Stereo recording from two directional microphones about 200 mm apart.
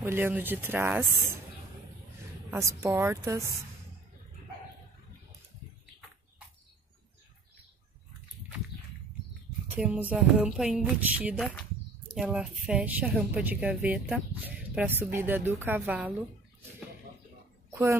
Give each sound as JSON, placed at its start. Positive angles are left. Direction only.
{"t": 0.0, "sound": "a woman's voice", "side_deg": -10}
{"t": 2.5, "sound": "a woman's voice", "side_deg": -10}
{"t": 9.8, "sound": "a woman's voice", "side_deg": -5}
{"t": 17.6, "sound": "a sound", "side_deg": -10}